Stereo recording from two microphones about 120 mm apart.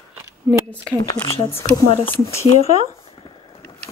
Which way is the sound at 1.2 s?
25° right (ahead or behind).